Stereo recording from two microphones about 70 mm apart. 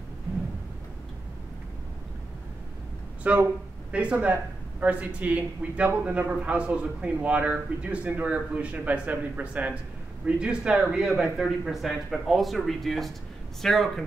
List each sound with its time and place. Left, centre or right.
3.3 s a man's voice: right; by 14.0 s centre